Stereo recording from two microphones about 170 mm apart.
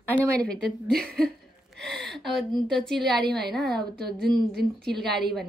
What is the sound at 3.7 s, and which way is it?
A woman's voice, 70° right (ahead or behind).